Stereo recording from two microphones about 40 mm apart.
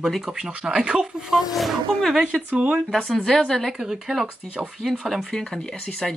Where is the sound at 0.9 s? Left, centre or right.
Centre.